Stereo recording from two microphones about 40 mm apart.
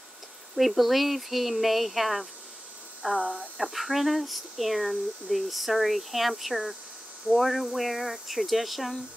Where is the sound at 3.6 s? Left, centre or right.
Centre.